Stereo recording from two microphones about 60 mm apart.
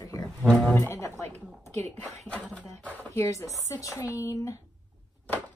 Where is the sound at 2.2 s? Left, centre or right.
Left.